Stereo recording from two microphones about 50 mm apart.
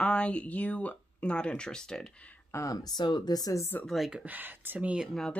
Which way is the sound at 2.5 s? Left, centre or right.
Left.